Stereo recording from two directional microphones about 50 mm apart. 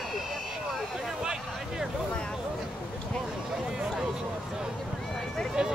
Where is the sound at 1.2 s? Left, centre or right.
Centre.